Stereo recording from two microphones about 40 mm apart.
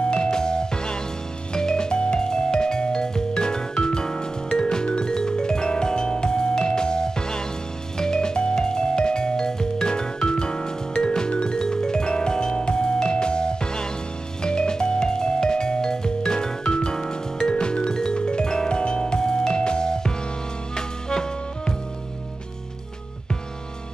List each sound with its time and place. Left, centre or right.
0.1 s music: centre